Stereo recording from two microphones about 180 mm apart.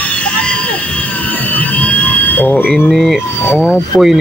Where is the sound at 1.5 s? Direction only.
10° left (ahead or behind).